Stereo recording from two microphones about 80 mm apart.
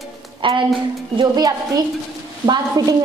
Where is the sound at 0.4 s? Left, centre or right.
Right.